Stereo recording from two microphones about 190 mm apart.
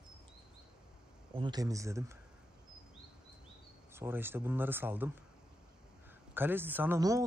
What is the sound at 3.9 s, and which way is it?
Speech, 10° right (ahead or behind).